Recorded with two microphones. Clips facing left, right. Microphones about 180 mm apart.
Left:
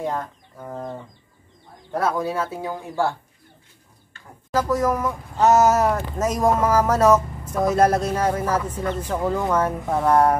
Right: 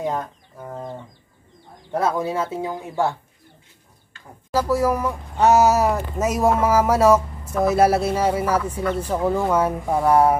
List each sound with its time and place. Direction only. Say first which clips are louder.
0.0 s speech: right 1 dB; 20° right (ahead or behind)
1.9 s speech: right 1 dB; 20° right (ahead or behind)
4.5 s speech: right 1 dB; 10° right (ahead or behind)